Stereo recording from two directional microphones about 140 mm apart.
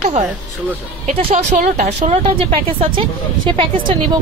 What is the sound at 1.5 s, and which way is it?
A woman's voice, 65° right (ahead or behind).